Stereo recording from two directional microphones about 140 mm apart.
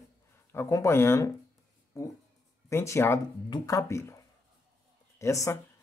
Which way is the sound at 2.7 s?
20° left (ahead or behind).